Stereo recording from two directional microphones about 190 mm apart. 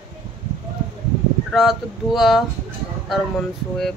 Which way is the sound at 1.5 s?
Centre (ahead or behind).